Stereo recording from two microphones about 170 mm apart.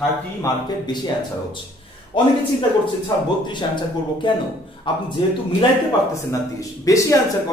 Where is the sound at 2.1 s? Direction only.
30° left (ahead or behind).